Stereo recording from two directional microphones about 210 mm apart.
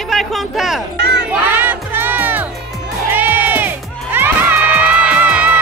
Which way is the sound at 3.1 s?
10° right (ahead or behind).